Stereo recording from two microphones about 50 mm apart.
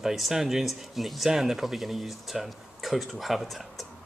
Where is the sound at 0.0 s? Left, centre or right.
Centre.